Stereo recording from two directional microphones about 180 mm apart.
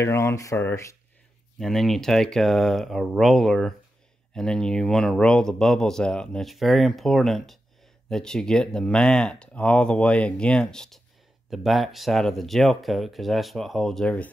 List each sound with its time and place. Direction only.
0.0 s speech: 15° left (ahead or behind)
1.6 s speech: centre (ahead or behind)